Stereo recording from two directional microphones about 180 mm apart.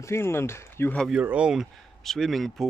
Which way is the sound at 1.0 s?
5° right (ahead or behind).